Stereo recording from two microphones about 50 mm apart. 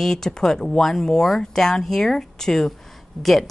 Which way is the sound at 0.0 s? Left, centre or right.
Centre.